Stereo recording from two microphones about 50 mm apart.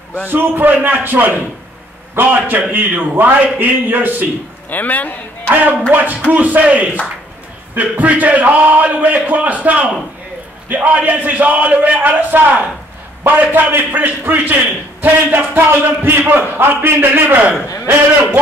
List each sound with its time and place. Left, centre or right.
0.3 s a man's voice: right
2.4 s a man's voice: right
4.6 s a man's voice: left
5.5 s a man's voice: right